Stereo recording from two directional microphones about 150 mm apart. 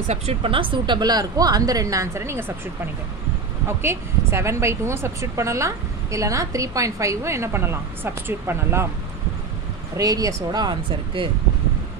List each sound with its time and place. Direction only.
0.0 s a woman's voice: 45° right (ahead or behind); by 2.5 s 15° right (ahead or behind)
3.6 s a woman's voice: 15° right (ahead or behind)
9.9 s a woman's voice: 25° right (ahead or behind)